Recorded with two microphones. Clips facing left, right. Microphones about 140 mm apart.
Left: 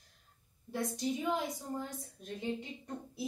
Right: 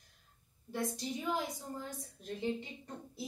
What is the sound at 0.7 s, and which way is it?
Speech, centre (ahead or behind).